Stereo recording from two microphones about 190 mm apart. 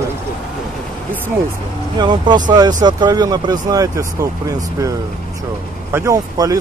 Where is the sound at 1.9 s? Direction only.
25° right (ahead or behind).